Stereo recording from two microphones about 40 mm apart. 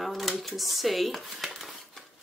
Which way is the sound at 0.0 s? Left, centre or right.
Centre.